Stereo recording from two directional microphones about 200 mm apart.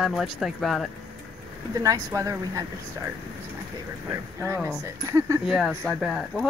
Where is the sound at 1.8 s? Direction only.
15° right (ahead or behind).